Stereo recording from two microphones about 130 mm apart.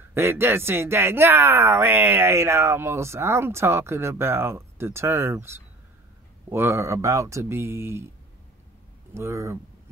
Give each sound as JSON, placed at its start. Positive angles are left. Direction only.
{"t": 0.1, "sound": "speech", "side_deg": -20}
{"t": 9.1, "sound": "speech", "side_deg": -20}